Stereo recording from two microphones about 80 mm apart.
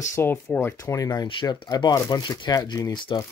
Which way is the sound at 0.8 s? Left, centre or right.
Left.